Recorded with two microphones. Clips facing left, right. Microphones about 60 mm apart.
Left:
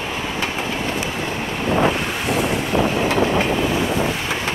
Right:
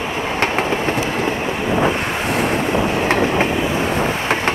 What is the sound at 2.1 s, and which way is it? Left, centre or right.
Vehicle, right.